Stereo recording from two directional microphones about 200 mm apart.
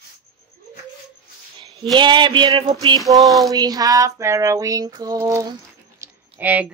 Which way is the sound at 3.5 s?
20° right (ahead or behind).